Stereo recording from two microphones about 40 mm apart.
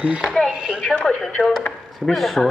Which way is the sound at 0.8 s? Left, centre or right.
Left.